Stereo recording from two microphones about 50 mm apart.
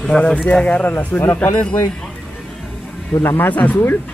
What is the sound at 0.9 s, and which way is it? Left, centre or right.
Speech, left.